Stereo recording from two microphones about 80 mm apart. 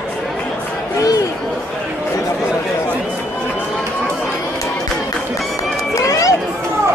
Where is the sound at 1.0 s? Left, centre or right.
Left.